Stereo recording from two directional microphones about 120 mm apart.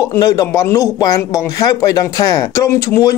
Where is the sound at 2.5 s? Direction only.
25° left (ahead or behind).